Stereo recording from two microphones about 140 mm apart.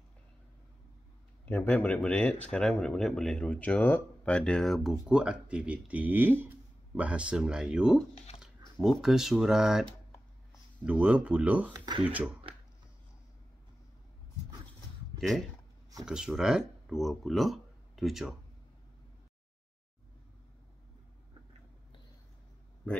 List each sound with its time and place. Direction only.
1.4 s a man's voice: 10° left (ahead or behind); by 8.0 s 5° right (ahead or behind)
8.4 s a sound: centre (ahead or behind)
9.0 s speech: 5° right (ahead or behind)
11.7 s speech: 30° right (ahead or behind)
12.0 s speech: 10° right (ahead or behind)
15.1 s speech: centre (ahead or behind)